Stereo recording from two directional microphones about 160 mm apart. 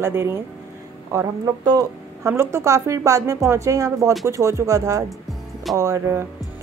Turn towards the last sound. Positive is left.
turn(degrees=-15)  # may be behind; listen again after turning